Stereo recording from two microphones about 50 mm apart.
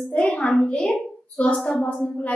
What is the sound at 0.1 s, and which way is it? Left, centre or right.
Speech, left.